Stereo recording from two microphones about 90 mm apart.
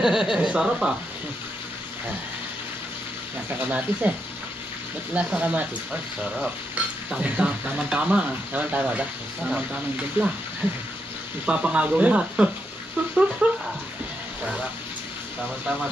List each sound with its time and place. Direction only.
0.0 s speech: 5° right (ahead or behind)
3.4 s speech: 20° right (ahead or behind)
5.1 s speech: 15° right (ahead or behind)
11.4 s speech: 15° right (ahead or behind)
13.4 s dog: 15° right (ahead or behind)